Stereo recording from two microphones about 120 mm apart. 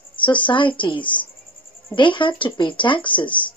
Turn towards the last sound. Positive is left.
turn(degrees=40)  # may be behind; listen again after turning